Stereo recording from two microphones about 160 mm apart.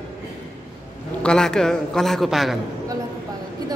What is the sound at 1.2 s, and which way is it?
A man's voice, 5° left (ahead or behind).